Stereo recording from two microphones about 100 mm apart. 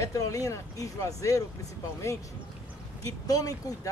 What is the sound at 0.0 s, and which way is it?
Speech, 35° left (ahead or behind).